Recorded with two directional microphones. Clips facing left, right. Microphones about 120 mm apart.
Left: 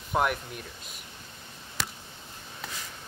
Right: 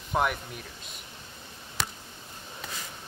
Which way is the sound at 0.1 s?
Centre (ahead or behind).